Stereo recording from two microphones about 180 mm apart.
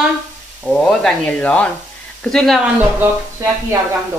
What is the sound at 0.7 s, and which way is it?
Speech, 5° left (ahead or behind).